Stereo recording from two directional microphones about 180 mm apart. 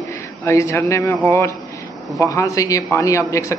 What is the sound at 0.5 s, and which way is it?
A man's voice, 15° left (ahead or behind).